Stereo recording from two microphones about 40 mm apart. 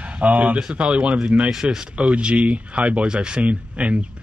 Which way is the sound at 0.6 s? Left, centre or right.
Right.